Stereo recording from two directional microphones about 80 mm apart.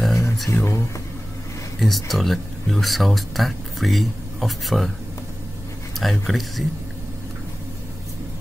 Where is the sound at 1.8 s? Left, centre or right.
Centre.